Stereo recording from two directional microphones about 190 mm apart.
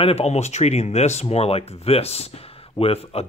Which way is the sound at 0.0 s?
35° left (ahead or behind).